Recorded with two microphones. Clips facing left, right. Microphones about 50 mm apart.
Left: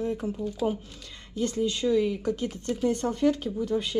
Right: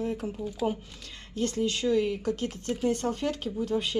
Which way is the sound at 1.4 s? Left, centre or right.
Centre.